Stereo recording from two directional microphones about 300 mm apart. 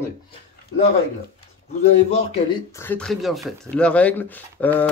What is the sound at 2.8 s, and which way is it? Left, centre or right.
Speech, centre.